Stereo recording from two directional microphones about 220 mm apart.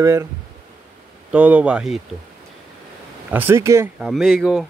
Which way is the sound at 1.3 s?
5° right (ahead or behind).